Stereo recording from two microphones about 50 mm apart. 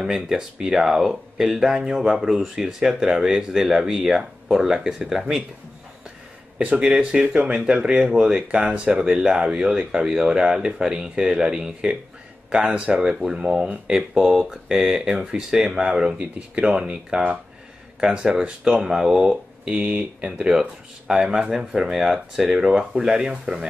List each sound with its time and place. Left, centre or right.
0.0 s speech: centre
7.0 s speech: centre
19.7 s speech: right
20.2 s speech: centre